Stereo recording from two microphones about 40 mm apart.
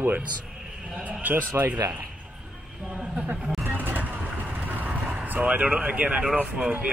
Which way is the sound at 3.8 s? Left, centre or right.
Right.